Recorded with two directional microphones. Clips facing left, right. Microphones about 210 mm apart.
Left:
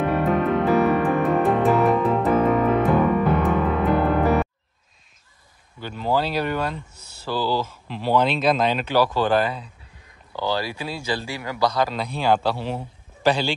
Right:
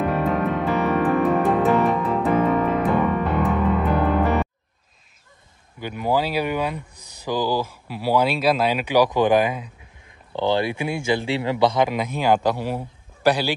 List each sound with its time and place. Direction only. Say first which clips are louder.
0.0 s music: left 1 dB; centre (ahead or behind)
5.8 s speech: right 1 dB; 15° right (ahead or behind)